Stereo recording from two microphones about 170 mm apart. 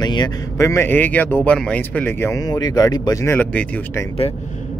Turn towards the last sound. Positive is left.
turn(degrees=10)  # may be behind; listen again after turning